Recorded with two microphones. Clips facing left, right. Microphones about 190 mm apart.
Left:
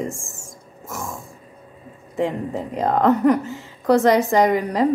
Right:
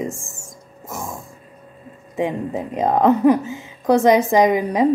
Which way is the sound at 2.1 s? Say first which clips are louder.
Right 1 dB; 15° right (ahead or behind).